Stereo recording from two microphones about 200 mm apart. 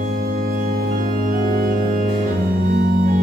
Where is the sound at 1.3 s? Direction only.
45° right (ahead or behind).